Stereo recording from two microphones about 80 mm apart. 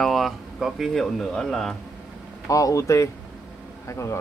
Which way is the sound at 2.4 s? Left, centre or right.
Left.